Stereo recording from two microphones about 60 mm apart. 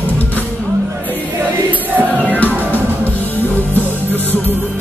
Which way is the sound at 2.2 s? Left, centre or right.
Left.